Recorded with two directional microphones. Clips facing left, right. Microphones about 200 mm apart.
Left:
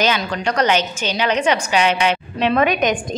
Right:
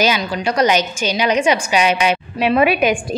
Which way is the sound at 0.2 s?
5° right (ahead or behind).